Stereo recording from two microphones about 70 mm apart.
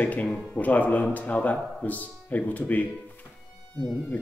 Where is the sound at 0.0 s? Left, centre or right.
Left.